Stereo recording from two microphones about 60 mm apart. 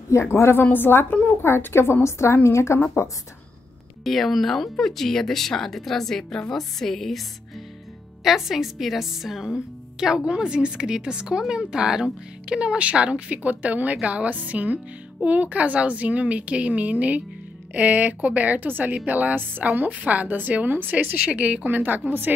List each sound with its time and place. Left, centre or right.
0.1 s a woman's voice: left
4.0 s a woman's voice: centre; by 22.3 s right